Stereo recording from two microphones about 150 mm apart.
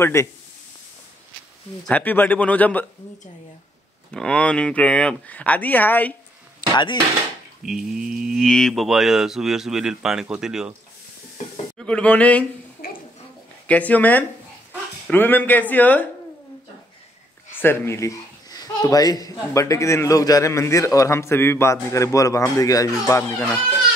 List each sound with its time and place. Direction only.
0.0 s speech: 20° left (ahead or behind)
1.9 s speech: 10° left (ahead or behind)
4.1 s speech: 5° left (ahead or behind)
6.7 s speech: 30° left (ahead or behind)
7.6 s cattle: 5° right (ahead or behind)
11.8 s speech: 5° left (ahead or behind)
13.7 s speech: 10° left (ahead or behind)
17.5 s speech: 15° left (ahead or behind)